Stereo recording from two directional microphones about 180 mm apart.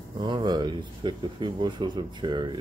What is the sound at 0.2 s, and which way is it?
Speech, 25° right (ahead or behind).